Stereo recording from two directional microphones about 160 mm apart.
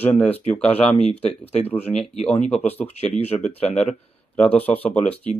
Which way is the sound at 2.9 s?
40° left (ahead or behind).